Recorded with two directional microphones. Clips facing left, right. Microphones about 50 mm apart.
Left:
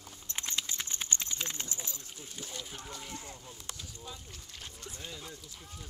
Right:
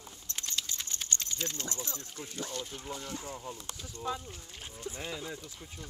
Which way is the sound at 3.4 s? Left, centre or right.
Right.